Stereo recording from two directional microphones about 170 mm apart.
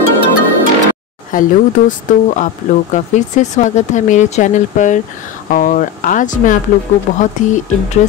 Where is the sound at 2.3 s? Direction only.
45° left (ahead or behind).